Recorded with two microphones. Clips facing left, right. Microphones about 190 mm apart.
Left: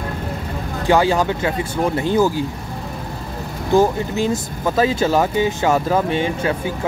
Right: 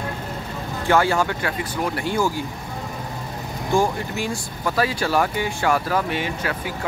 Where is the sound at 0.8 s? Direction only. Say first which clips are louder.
Left 3 dB; 15° left (ahead or behind).